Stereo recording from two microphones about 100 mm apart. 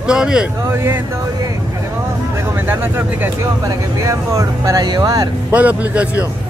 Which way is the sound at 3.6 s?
30° right (ahead or behind).